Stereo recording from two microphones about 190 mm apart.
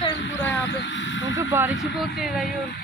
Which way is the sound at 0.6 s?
70° left (ahead or behind).